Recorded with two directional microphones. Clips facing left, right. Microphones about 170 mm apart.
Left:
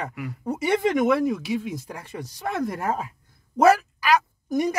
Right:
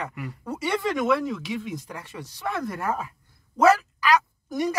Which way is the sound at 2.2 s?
40° left (ahead or behind).